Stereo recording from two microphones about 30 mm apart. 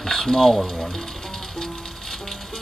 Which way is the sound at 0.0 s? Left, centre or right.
Centre.